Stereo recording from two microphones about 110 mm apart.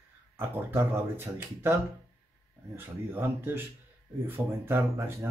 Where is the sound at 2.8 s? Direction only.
20° right (ahead or behind).